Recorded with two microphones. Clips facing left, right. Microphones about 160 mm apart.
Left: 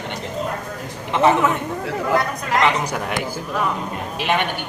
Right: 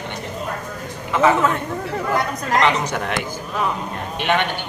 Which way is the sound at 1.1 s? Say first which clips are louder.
Even; 20° left (ahead or behind).